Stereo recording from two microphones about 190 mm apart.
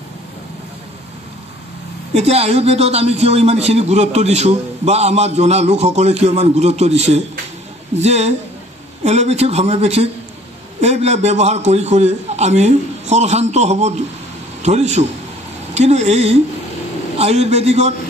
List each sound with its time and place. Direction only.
2.1 s a man's voice: 35° right (ahead or behind)